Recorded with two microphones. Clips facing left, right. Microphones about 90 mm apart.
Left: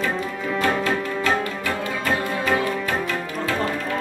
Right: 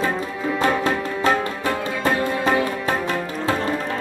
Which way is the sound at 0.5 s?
30° right (ahead or behind).